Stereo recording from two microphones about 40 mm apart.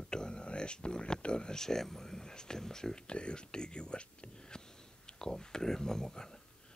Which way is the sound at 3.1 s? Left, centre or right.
Left.